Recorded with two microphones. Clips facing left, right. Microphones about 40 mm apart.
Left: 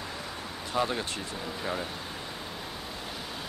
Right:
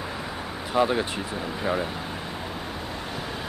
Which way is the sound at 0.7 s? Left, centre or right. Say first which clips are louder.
Right 7 dB; centre.